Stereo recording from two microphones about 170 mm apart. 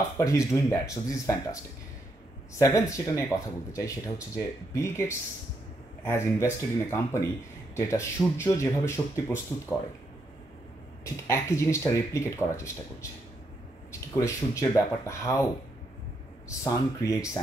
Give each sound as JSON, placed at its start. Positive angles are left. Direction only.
{"t": 0.2, "sound": "speech", "side_deg": 20}
{"t": 2.6, "sound": "speech", "side_deg": 20}
{"t": 11.1, "sound": "speech", "side_deg": 15}
{"t": 14.1, "sound": "speech", "side_deg": 20}
{"t": 16.4, "sound": "speech", "side_deg": 20}